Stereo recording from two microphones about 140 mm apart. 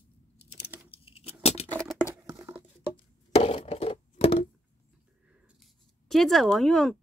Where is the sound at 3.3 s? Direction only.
45° left (ahead or behind).